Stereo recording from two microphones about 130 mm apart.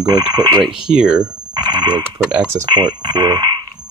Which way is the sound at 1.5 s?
35° right (ahead or behind).